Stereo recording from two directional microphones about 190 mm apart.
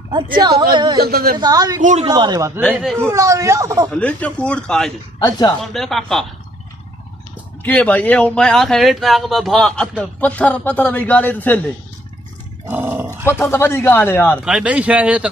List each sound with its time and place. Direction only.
0.4 s speech: 20° right (ahead or behind)
1.0 s speech: 55° right (ahead or behind)
1.4 s speech: 20° right (ahead or behind)
1.8 s speech: 40° right (ahead or behind)
2.0 s speech: 20° right (ahead or behind)
2.7 s speech: centre (ahead or behind)
3.0 s speech: 15° right (ahead or behind)
3.9 s speech: 5° left (ahead or behind)
7.6 s speech: 10° left (ahead or behind)
12.6 s dog: 10° right (ahead or behind)
13.4 s speech: 15° left (ahead or behind)
14.4 s speech: 5° right (ahead or behind)